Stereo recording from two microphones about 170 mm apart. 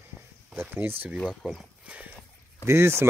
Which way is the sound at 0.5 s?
10° right (ahead or behind).